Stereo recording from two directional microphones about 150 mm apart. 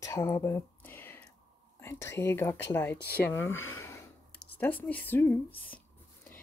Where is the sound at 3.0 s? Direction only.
90° left.